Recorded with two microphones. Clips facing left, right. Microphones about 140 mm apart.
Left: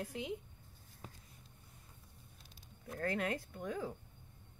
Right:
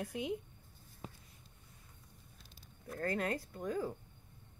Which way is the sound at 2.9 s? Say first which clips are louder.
Right 1 dB; centre (ahead or behind).